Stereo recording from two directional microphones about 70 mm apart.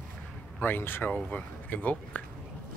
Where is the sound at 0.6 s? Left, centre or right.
Left.